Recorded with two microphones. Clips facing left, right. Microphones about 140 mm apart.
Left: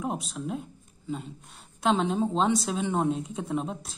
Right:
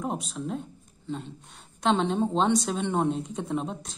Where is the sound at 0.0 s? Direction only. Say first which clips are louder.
Even; centre (ahead or behind).